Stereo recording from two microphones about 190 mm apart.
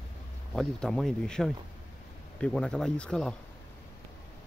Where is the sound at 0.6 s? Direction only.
5° left (ahead or behind).